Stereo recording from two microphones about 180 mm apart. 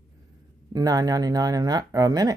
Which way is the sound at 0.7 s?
20° right (ahead or behind).